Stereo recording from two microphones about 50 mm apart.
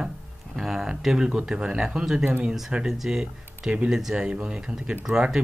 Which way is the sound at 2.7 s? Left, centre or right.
Centre.